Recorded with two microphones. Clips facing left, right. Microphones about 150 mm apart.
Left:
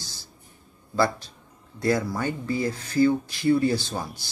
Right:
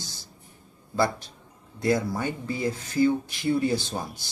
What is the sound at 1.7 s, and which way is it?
Speech, 20° right (ahead or behind).